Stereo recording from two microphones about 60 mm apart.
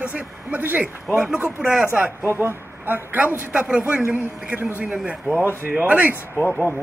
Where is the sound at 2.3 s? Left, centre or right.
Right.